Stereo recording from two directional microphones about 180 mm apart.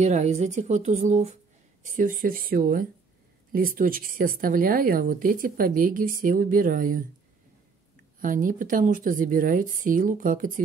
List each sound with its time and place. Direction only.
0.0 s speech: 40° right (ahead or behind)
8.2 s speech: 45° right (ahead or behind)